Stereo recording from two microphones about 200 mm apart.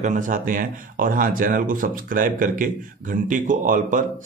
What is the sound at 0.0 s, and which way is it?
Speech, 40° right (ahead or behind).